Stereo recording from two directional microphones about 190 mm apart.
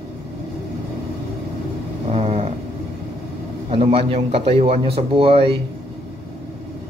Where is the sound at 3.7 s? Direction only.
30° right (ahead or behind).